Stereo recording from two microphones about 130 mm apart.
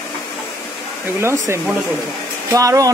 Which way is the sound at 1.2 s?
20° right (ahead or behind).